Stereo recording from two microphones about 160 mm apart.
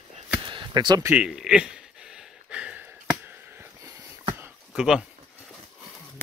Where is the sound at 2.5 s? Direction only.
5° right (ahead or behind).